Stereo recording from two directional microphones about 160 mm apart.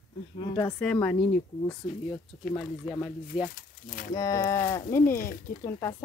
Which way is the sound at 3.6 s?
60° left (ahead or behind).